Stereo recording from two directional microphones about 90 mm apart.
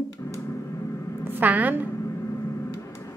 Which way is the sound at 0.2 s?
25° left (ahead or behind).